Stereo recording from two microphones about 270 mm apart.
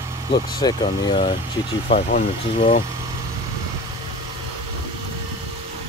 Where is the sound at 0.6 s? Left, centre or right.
Centre.